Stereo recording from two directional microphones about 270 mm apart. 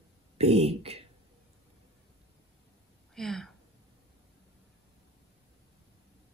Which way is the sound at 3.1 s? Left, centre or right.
Centre.